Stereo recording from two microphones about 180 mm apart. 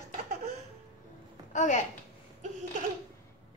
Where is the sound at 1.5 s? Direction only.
45° left (ahead or behind).